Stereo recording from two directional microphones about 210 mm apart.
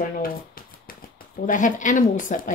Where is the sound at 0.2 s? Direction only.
45° left (ahead or behind).